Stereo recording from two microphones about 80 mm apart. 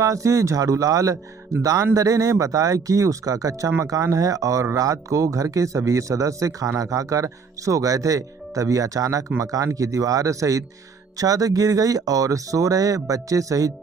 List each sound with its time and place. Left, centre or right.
0.0 s speech: right